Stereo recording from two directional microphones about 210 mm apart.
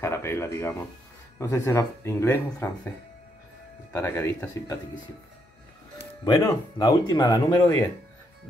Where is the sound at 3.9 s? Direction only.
15° left (ahead or behind).